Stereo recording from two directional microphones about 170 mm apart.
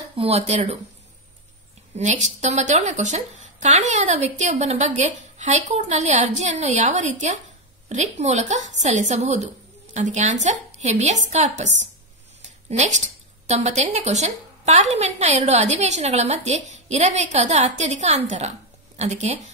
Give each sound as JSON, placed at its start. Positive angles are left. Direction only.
{"t": 0.1, "sound": "speech", "side_deg": -35}
{"t": 2.0, "sound": "a woman's voice", "side_deg": -45}